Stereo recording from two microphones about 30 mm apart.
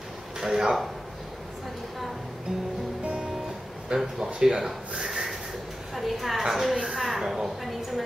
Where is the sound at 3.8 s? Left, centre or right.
Centre.